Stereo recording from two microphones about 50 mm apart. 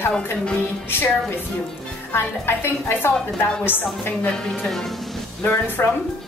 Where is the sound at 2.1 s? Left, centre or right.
Left.